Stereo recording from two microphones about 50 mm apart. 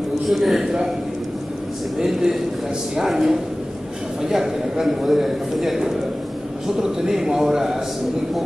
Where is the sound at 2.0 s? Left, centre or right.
Centre.